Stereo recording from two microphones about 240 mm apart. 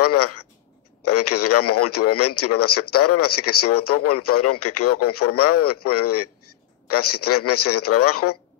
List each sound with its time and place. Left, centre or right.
0.0 s a man's voice: left